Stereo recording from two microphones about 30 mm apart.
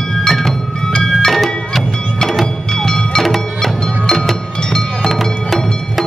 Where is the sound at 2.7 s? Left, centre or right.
Centre.